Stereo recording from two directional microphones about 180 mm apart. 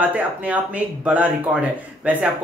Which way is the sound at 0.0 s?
10° right (ahead or behind).